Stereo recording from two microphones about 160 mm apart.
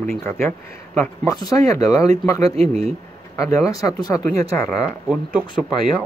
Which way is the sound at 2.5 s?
40° right (ahead or behind).